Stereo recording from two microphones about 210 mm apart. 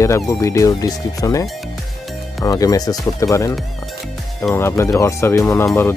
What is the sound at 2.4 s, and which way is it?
Speech, 15° left (ahead or behind).